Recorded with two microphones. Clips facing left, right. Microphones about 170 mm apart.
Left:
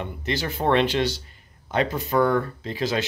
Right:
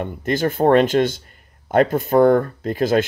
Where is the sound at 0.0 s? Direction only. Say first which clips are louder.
Right 7 dB; 50° right (ahead or behind).